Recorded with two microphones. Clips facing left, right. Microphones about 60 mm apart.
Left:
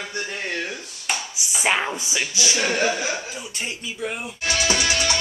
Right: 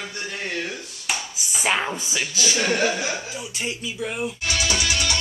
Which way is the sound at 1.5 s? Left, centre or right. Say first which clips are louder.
Left 1 dB; centre.